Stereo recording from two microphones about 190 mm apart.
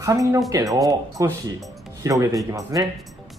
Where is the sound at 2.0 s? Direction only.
20° right (ahead or behind).